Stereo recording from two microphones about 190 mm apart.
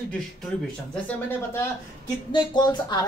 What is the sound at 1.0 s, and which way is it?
Speech, 15° left (ahead or behind).